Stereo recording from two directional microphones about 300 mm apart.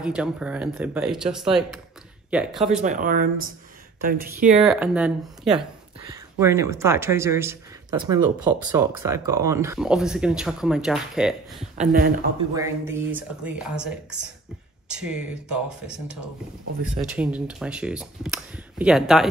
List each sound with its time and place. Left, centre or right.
0.0 s speech: centre
2.8 s speech: right
4.6 s speech: centre
11.7 s speech: right
12.5 s speech: centre
16.8 s speech: centre